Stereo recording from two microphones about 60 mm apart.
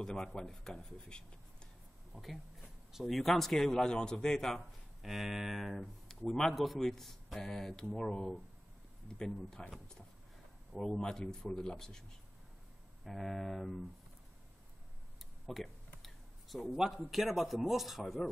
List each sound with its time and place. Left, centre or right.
0.0 s speech: centre
2.1 s speech: centre
5.0 s speech: centre
13.0 s speech: centre
15.4 s speech: centre
16.0 s a sound: centre
17.1 s speech: centre